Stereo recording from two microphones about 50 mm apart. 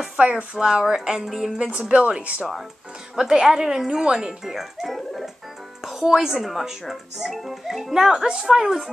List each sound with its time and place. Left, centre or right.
0.2 s speech: right
1.6 s a woman's voice: right
3.2 s speech: centre